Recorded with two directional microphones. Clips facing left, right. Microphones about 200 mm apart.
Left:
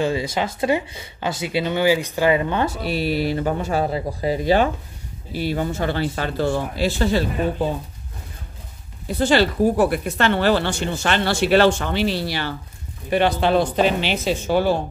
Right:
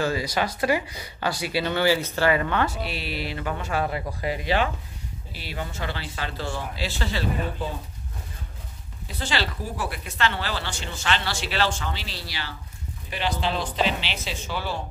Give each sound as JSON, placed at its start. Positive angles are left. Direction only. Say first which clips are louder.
{"t": 0.0, "sound": "speech", "louder": "left 3 dB", "side_deg": 25}
{"t": 2.8, "sound": "speech", "louder": "left 9 dB", "side_deg": 45}
{"t": 9.0, "sound": "speech", "louder": "left 11 dB", "side_deg": 50}